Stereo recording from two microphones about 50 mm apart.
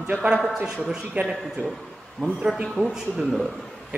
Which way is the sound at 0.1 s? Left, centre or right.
Right.